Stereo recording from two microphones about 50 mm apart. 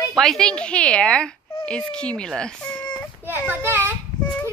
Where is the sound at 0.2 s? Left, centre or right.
Centre.